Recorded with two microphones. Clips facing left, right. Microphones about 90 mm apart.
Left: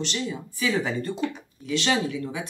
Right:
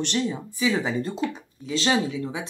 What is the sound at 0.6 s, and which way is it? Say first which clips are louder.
Speech: right 2 dB; 20° right (ahead or behind).